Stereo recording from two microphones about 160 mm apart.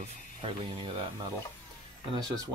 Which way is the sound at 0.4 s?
35° right (ahead or behind).